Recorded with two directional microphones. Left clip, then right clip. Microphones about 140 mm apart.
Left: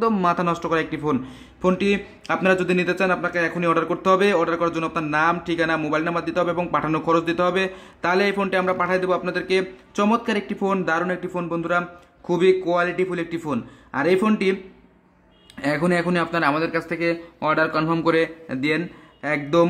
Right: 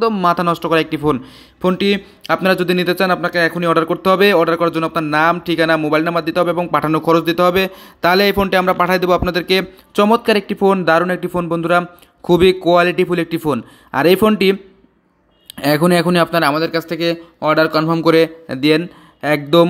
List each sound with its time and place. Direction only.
0.2 s a man's voice: 20° right (ahead or behind)